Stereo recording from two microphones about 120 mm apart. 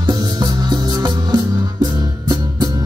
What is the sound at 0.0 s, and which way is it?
Music, 35° right (ahead or behind).